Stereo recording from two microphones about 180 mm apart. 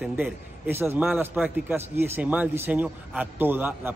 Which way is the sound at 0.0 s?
10° right (ahead or behind).